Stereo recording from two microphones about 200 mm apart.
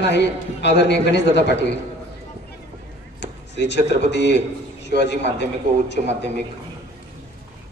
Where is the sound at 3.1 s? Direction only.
60° left (ahead or behind).